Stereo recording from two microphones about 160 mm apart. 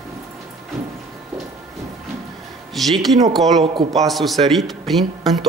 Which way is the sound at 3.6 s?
30° right (ahead or behind).